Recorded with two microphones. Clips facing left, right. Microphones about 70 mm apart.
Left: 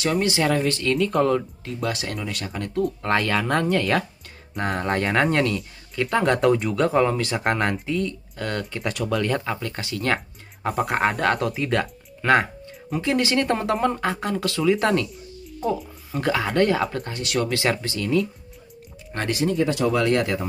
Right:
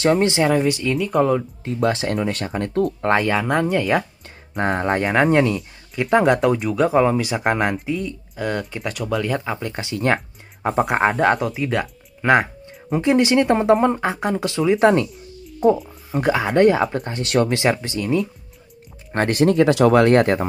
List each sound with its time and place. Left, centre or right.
0.0 s speech: right
0.4 s speech: centre
1.6 s speech: right
3.0 s speech: right
3.3 s speech: centre
4.6 s speech: right; by 9.5 s centre
9.5 s speech: right
11.3 s speech: centre; by 17.6 s right
17.6 s speech: right
19.1 s speech: right
19.4 s speech: right
19.9 s speech: right